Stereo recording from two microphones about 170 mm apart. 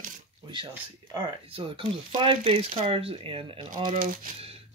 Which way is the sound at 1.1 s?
30° right (ahead or behind).